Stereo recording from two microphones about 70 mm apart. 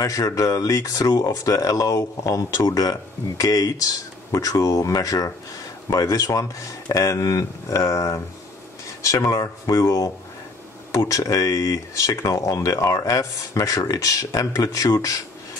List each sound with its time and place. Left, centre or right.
0.0 s speech: left